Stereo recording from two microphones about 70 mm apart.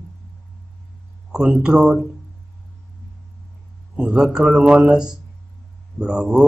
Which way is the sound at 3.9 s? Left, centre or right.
Centre.